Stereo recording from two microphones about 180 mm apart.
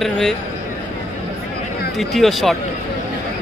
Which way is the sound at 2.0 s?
Centre (ahead or behind).